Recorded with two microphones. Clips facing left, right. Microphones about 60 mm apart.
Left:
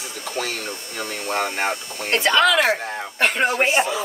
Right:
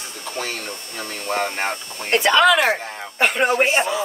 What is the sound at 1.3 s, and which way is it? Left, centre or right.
Speech, centre.